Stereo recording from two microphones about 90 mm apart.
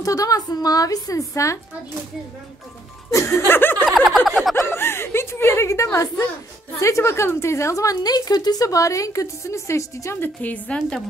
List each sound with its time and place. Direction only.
0.0 s a woman's voice: 40° left (ahead or behind)
3.1 s speech: 30° left (ahead or behind)
3.8 s a sound: centre (ahead or behind)
4.6 s chuckle: 30° left (ahead or behind)
6.8 s a woman's voice: 35° left (ahead or behind)
10.2 s a woman's voice: 20° left (ahead or behind)